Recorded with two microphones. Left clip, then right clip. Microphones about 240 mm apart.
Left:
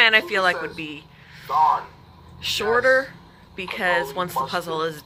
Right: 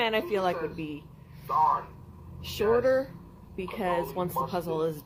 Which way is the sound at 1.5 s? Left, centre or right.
Left.